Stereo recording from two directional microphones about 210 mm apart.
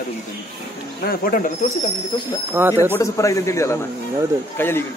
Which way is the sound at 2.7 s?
15° left (ahead or behind).